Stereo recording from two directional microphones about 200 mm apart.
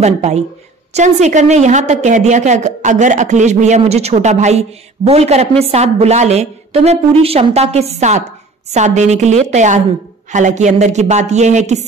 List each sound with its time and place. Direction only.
0.0 s a woman's voice: 35° right (ahead or behind)